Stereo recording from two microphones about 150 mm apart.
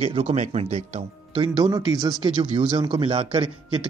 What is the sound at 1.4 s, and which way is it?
A man's voice, 25° right (ahead or behind).